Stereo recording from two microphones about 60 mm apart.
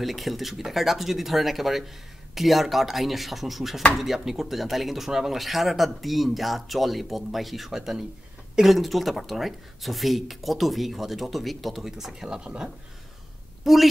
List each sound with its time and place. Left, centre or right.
0.0 s speech: centre
13.7 s speech: centre